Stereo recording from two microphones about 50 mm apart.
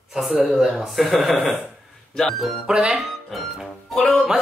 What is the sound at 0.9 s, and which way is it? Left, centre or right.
Speech, centre.